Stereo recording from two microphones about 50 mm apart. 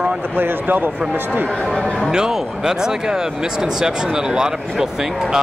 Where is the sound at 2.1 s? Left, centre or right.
Centre.